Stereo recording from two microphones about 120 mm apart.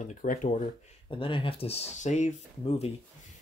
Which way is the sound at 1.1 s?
45° left (ahead or behind).